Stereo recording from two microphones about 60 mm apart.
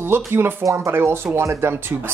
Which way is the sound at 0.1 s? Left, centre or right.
Right.